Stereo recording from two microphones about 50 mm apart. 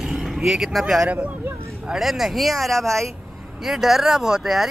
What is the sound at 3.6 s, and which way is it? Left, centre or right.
Speech, centre.